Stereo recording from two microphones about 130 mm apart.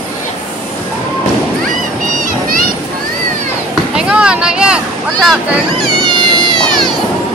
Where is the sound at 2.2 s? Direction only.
90° right.